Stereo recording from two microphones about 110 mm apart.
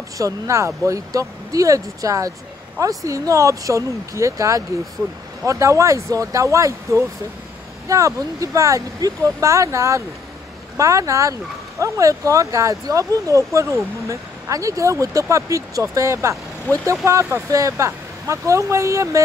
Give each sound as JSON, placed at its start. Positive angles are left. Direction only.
{"t": 0.2, "sound": "speech", "side_deg": -25}
{"t": 16.7, "sound": "speech", "side_deg": 15}
{"t": 17.0, "sound": "speech", "side_deg": -25}